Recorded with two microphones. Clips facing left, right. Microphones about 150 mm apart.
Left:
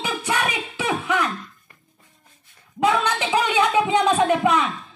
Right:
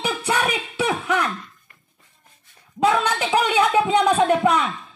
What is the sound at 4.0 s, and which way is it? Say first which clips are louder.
Speech: right 1 dB; 15° right (ahead or behind).